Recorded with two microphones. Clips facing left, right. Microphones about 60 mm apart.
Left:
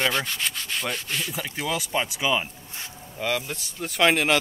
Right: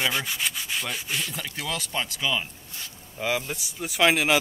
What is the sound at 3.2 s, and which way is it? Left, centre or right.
Rub, centre.